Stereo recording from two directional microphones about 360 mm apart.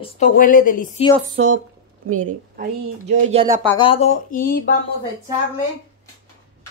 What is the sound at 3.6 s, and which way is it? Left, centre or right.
Speech, centre.